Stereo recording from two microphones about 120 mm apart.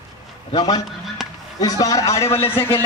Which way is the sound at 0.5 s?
35° left (ahead or behind).